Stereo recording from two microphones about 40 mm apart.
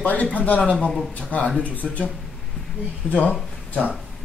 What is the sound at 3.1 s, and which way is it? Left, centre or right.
Speech, left.